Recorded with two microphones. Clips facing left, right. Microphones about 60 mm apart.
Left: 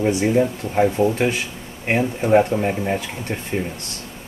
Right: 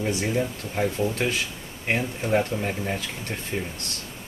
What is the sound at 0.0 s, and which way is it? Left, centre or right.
Speech, centre.